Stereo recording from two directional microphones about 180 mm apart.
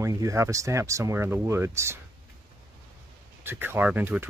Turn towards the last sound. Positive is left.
turn(degrees=-10)  # may be behind; listen again after turning